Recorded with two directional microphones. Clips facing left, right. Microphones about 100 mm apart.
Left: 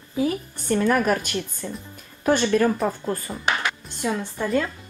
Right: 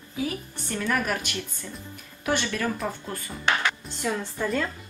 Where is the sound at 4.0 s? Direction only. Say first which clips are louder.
Left 4 dB; 10° left (ahead or behind).